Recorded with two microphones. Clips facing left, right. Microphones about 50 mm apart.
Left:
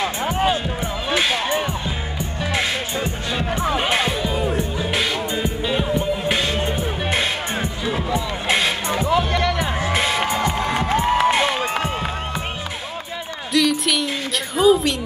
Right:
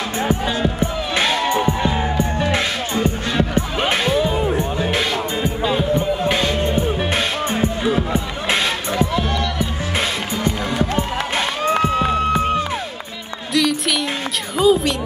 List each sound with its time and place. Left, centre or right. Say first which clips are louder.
0.6 s music: right 5 dB; right
3.9 s music: right 2 dB; left
4.2 s music: right 3 dB; centre
6.6 s music: right 4 dB; left
7.8 s music: right 3 dB; right
9.3 s music: left 1 dB; left
9.9 s music: left 1 dB; left
11.2 s crowd: left 2 dB; left
13.5 s music: even; centre
14.6 s a sound: even; centre